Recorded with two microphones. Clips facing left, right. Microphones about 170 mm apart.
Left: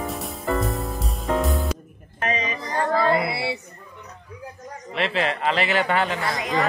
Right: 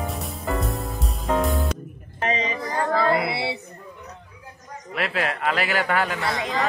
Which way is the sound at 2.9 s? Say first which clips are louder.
Left 1 dB; centre (ahead or behind).